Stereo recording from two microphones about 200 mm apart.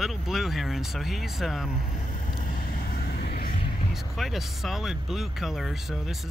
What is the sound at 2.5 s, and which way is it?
Vehicle, 50° left (ahead or behind).